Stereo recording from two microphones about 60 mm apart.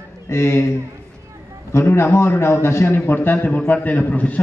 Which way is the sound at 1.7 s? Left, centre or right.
Left.